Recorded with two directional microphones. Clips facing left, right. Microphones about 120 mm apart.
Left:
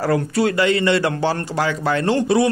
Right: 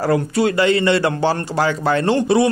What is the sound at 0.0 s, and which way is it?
A man's voice, 20° right (ahead or behind).